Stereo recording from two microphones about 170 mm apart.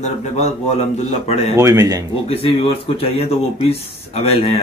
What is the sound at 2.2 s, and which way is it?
Speech, 35° left (ahead or behind).